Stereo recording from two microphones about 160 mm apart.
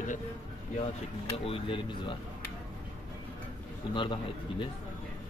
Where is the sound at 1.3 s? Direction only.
35° left (ahead or behind).